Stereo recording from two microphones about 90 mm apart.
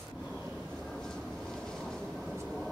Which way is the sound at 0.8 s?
5° left (ahead or behind).